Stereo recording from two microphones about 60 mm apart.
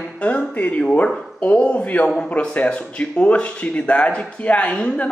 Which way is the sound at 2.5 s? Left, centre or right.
Left.